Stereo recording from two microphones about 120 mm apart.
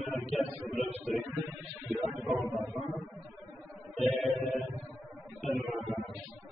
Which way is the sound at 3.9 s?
Centre (ahead or behind).